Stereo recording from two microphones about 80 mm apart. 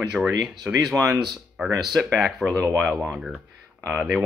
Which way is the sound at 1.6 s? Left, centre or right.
Centre.